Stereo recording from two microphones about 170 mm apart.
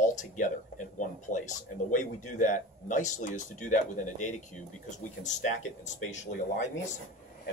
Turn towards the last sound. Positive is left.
turn(degrees=45)  # may be behind; listen again after turning